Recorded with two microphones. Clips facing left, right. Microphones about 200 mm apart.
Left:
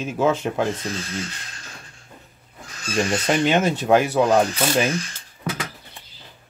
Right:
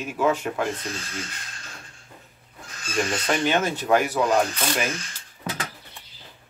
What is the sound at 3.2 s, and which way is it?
Speech, 20° left (ahead or behind).